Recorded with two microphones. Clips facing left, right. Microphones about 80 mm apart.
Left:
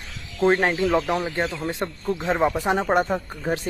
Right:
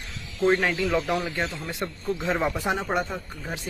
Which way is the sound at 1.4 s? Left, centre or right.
Left.